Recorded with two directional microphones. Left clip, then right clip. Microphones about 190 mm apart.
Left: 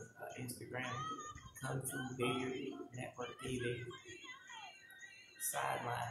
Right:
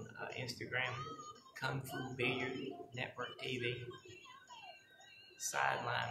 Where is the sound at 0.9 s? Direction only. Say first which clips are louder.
Left 1 dB; 25° right (ahead or behind).